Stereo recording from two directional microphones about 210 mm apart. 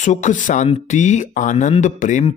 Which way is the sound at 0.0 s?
35° left (ahead or behind).